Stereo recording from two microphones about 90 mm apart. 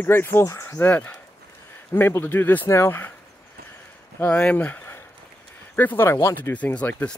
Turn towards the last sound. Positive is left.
turn(degrees=15)  # may be behind; listen again after turning